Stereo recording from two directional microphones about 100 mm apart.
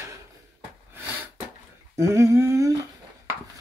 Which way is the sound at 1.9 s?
30° right (ahead or behind).